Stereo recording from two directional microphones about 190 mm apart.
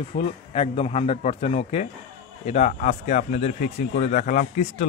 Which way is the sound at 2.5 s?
40° left (ahead or behind).